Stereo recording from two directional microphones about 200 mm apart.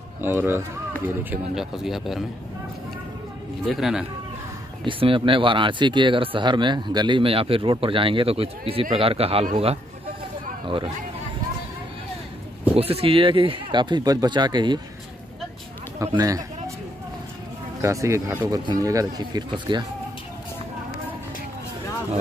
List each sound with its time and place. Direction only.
0.2 s speech: 10° right (ahead or behind)
3.6 s speech: centre (ahead or behind)
4.8 s speech: 25° right (ahead or behind)
10.6 s speech: 25° right (ahead or behind)
12.7 s speech: 30° right (ahead or behind)
16.0 s speech: 15° right (ahead or behind)
17.8 s speech: 15° right (ahead or behind)